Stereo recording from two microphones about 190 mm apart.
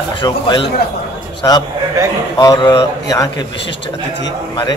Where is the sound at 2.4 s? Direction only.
20° left (ahead or behind).